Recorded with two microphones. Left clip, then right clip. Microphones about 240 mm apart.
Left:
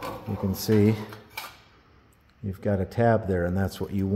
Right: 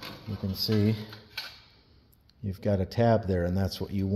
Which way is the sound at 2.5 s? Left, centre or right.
Centre.